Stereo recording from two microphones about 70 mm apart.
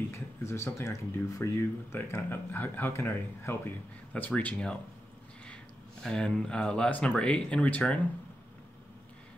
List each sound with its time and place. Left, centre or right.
0.1 s a sound: left
0.7 s speech: left
2.0 s speech: left
4.1 s speech: centre
6.0 s speech: centre